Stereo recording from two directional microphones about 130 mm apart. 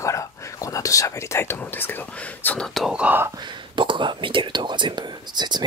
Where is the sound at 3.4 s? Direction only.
35° right (ahead or behind).